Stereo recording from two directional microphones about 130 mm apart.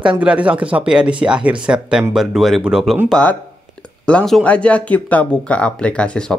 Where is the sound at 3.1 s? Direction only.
10° left (ahead or behind).